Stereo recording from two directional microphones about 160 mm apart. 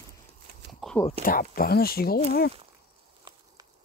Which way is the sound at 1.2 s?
65° left (ahead or behind).